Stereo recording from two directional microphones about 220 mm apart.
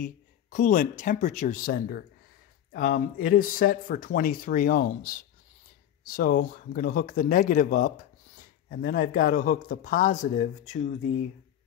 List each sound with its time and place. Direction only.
0.0 s speech: 35° left (ahead or behind)